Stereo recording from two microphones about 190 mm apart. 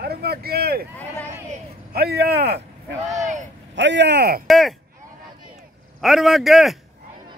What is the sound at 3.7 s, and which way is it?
Speech, 70° right (ahead or behind).